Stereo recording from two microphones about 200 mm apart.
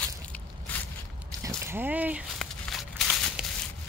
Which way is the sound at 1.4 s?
10° right (ahead or behind).